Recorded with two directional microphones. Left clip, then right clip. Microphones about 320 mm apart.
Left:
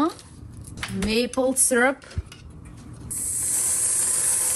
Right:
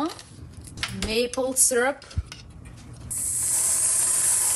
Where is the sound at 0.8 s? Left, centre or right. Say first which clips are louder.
Right 2 dB; centre.